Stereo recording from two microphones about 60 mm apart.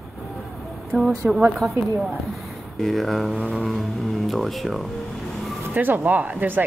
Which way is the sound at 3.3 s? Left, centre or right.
Right.